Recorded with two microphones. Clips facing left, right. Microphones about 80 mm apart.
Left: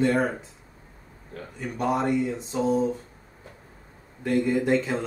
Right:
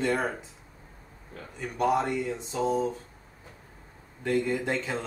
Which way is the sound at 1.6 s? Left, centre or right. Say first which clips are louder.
Even; centre.